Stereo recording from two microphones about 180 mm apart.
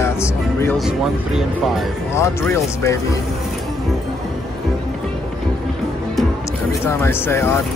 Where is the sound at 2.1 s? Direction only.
15° left (ahead or behind).